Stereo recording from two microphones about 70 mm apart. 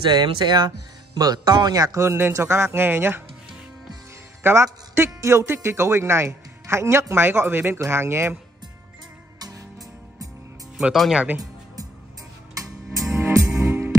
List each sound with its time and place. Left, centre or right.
0.1 s speech: right
4.4 s a man's voice: right
10.8 s speech: centre
13.1 s music: right